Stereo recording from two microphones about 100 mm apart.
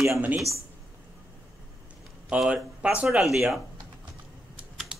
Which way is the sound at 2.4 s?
10° right (ahead or behind).